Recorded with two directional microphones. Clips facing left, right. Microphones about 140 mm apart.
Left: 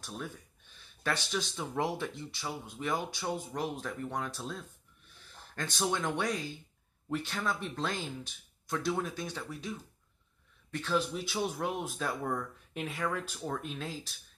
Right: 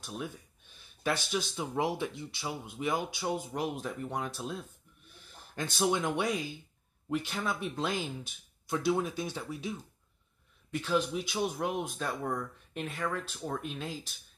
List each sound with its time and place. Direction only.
0.0 s speech: 5° right (ahead or behind)